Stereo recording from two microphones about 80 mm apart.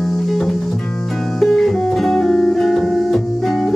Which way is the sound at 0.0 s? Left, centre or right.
Centre.